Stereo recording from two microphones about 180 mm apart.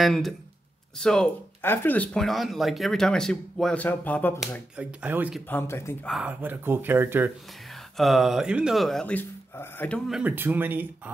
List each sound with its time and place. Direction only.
0.0 s speech: centre (ahead or behind)
4.7 s speech: 10° right (ahead or behind)
5.5 s speech: 15° left (ahead or behind)
6.0 s speech: 5° right (ahead or behind)
8.0 s speech: centre (ahead or behind)